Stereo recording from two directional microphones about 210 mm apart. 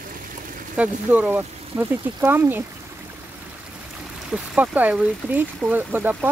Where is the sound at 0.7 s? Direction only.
10° right (ahead or behind).